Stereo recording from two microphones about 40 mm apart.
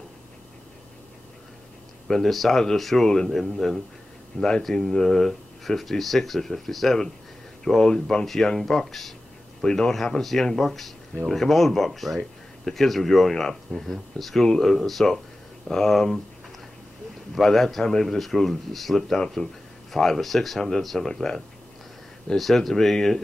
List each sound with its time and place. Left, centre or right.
2.0 s speech: centre
17.4 s speech: centre
22.4 s speech: centre